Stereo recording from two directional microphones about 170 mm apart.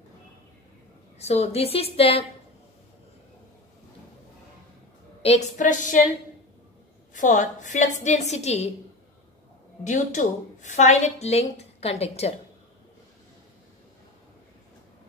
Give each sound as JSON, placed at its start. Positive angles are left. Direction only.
{"t": 1.1, "sound": "a woman's voice", "side_deg": 40}
{"t": 5.2, "sound": "a woman's voice", "side_deg": 40}
{"t": 7.2, "sound": "a woman's voice", "side_deg": 45}
{"t": 9.8, "sound": "a woman's voice", "side_deg": 45}